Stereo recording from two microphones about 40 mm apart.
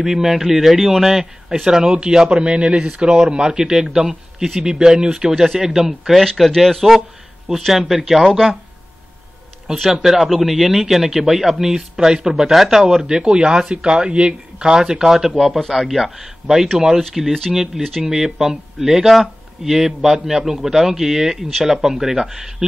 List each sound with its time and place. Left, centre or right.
0.0 s a man's voice: centre
5.3 s speech: centre
10.0 s a man's voice: centre